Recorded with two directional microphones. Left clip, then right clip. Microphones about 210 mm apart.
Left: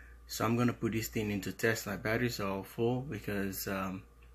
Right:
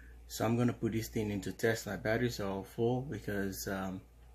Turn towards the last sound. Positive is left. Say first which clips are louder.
# left 1 dB
turn(degrees=10)  # may be behind; listen again after turning